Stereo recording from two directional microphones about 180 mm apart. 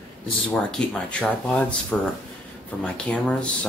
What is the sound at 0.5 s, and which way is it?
Speech, 5° left (ahead or behind).